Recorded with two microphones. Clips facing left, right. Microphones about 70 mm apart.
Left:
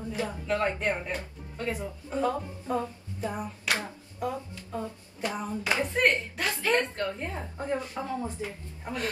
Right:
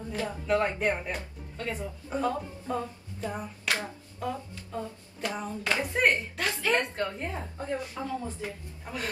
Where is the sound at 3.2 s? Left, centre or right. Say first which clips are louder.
Left 2 dB; centre.